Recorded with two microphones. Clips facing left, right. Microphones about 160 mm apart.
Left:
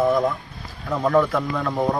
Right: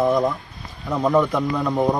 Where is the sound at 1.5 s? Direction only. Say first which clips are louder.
Right 2 dB; 15° right (ahead or behind).